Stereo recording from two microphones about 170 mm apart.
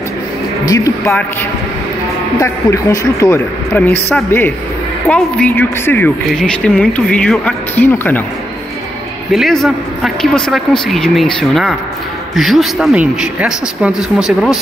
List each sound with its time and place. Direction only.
0.7 s speech: 20° left (ahead or behind)
2.4 s a woman's voice: 20° left (ahead or behind)
9.3 s speech: centre (ahead or behind)